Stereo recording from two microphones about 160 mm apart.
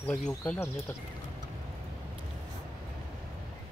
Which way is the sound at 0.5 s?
15° left (ahead or behind).